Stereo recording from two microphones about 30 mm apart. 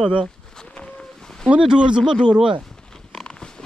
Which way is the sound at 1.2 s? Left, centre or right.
Centre.